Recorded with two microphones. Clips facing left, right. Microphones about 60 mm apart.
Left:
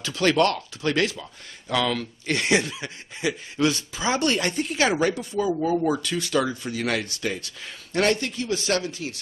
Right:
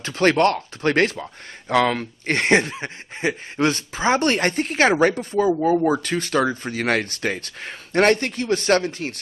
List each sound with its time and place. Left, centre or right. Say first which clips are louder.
0.0 s speech: right 3 dB; right